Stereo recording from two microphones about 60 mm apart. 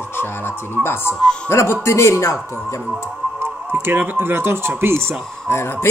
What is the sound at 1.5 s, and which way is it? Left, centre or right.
Speech, left.